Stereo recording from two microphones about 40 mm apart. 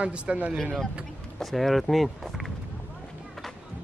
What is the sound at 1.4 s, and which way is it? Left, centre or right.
Speech, centre.